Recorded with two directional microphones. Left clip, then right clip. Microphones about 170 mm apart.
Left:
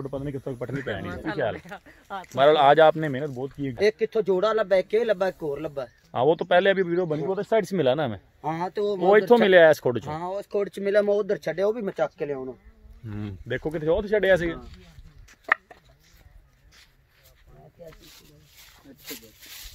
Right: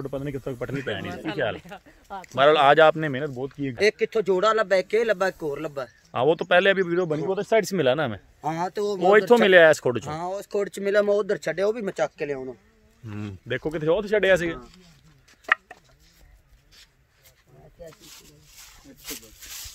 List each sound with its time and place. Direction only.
0.0 s speech: 5° right (ahead or behind)
1.0 s speech: 40° right (ahead or behind)
2.2 s speech: centre (ahead or behind); by 5.9 s 20° right (ahead or behind)
6.1 s speech: 5° left (ahead or behind)
8.4 s speech: 50° right (ahead or behind)
9.0 s speech: centre (ahead or behind)
10.0 s speech: 55° right (ahead or behind); by 12.5 s 10° right (ahead or behind)
13.3 s speech: centre (ahead or behind)
15.4 s chopping: 15° right (ahead or behind)
18.0 s a sound: 30° right (ahead or behind)
19.0 s snake: 40° right (ahead or behind)